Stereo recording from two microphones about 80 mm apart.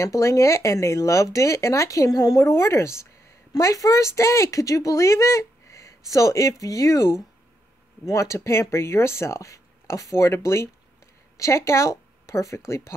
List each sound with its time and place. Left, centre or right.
0.0 s speech: left
2.5 s speech: left